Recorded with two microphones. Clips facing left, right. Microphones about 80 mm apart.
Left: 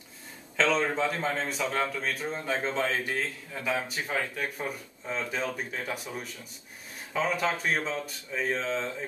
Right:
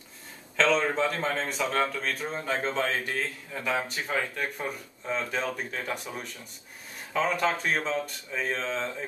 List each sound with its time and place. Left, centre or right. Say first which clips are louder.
0.6 s speech: right 2 dB; centre